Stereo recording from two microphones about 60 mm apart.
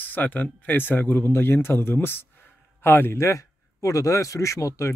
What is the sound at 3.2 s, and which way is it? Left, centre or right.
Speech, left.